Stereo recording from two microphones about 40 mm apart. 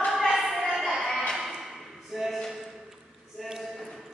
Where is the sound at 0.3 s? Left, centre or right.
Centre.